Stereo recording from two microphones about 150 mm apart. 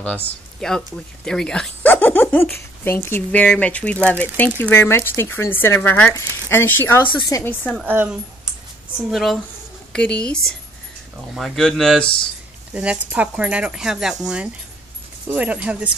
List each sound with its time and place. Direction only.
0.0 s a woman's voice: 5° left (ahead or behind); by 7.5 s 20° left (ahead or behind)
7.8 s speech: 10° right (ahead or behind)
9.1 s speech: centre (ahead or behind)
12.7 s speech: 10° right (ahead or behind)